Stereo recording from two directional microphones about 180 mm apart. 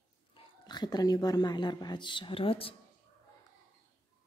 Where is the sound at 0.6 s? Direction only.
20° left (ahead or behind).